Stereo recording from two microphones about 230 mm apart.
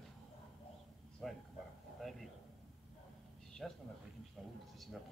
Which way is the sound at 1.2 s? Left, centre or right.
Centre.